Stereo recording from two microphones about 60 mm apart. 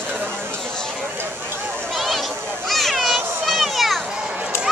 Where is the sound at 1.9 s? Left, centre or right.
Centre.